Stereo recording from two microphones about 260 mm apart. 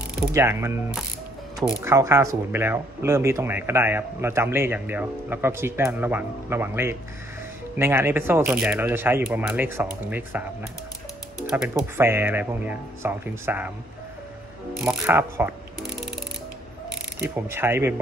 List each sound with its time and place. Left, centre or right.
0.3 s a man's voice: centre
11.5 s a man's voice: centre
14.9 s a man's voice: centre
17.2 s a man's voice: centre